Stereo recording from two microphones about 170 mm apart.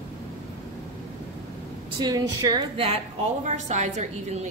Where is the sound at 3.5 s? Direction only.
45° right (ahead or behind).